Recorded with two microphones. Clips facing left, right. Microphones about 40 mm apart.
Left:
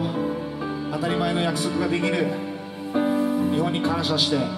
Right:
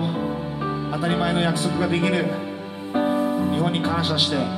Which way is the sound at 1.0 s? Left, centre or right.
Centre.